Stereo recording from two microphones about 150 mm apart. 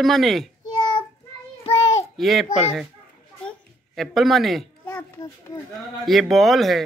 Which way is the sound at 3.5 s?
Centre (ahead or behind).